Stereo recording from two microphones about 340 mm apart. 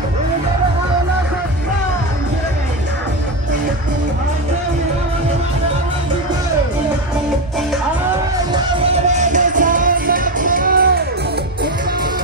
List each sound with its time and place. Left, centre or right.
8.5 s music: centre